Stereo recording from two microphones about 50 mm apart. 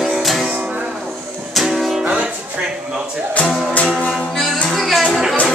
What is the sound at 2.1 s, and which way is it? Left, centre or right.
Music, right.